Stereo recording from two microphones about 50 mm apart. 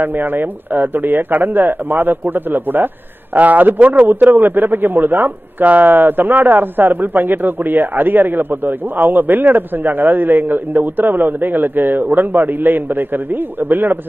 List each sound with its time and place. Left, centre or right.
0.0 s a man's voice: right